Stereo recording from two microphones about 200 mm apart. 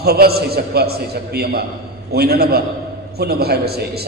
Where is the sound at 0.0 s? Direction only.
50° right (ahead or behind).